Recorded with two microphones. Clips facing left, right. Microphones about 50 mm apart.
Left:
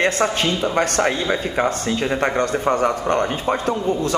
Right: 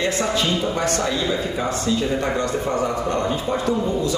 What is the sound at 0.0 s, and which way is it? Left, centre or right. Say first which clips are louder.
Speech: left 3 dB; left.